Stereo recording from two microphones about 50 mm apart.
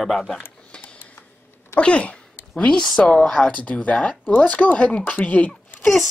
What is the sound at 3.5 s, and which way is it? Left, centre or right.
Speech, left.